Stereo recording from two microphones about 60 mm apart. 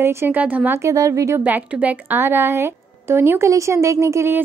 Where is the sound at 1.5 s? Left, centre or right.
Right.